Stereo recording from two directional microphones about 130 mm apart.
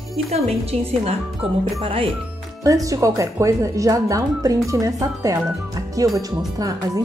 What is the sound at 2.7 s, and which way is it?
Speech, 25° right (ahead or behind).